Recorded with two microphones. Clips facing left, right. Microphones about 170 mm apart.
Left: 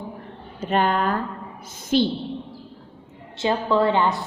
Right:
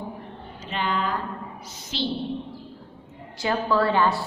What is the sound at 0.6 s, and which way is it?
A woman's voice, 50° left (ahead or behind).